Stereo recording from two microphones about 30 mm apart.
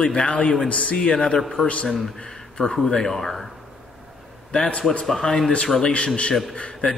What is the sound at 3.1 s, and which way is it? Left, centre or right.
Speech, centre.